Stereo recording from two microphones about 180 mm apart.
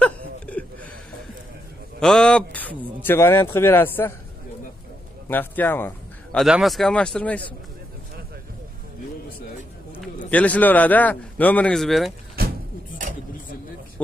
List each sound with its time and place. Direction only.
0.0 s a sound: 10° left (ahead or behind)
2.0 s speech: 5° left (ahead or behind)
5.3 s a man's voice: 10° left (ahead or behind)
6.4 s speech: centre (ahead or behind)
10.3 s speech: 10° left (ahead or behind)
12.4 s a sound: 55° right (ahead or behind)